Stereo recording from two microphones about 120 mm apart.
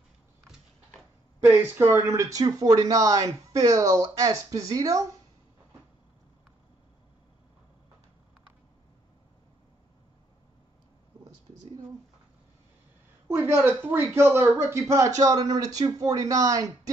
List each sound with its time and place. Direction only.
1.4 s speech: 20° right (ahead or behind)
13.3 s speech: 20° right (ahead or behind)